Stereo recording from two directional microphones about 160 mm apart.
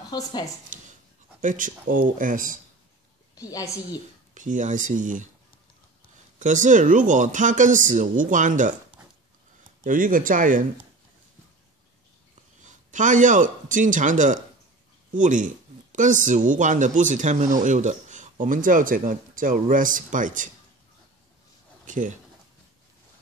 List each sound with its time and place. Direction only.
0.1 s a woman's voice: 25° left (ahead or behind)
0.7 s goat: 55° right (ahead or behind)
1.4 s speech: 55° right (ahead or behind)
3.3 s a woman's voice: 20° left (ahead or behind)
4.3 s speech: 55° right (ahead or behind)
6.4 s speech: 55° right (ahead or behind)
9.8 s speech: 55° right (ahead or behind)
12.6 s speech: 50° right (ahead or behind)
21.8 s speech: 55° right (ahead or behind)